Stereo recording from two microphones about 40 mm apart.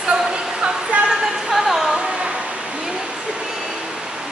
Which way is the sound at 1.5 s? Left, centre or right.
Centre.